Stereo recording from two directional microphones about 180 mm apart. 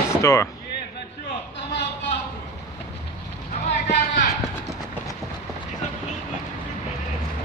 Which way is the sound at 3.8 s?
40° left (ahead or behind).